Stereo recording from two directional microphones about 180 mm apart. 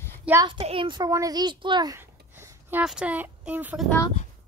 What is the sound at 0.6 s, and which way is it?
A child's voice, 30° right (ahead or behind).